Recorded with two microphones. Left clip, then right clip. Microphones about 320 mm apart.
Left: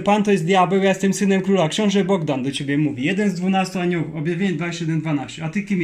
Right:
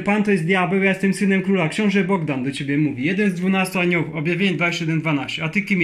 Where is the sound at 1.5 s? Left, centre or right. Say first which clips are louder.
Left 2 dB; left.